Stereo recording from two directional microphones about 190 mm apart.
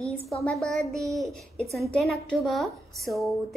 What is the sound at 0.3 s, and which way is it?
A woman's voice, centre (ahead or behind).